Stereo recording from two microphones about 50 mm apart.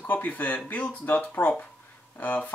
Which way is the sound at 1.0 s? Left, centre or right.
Left.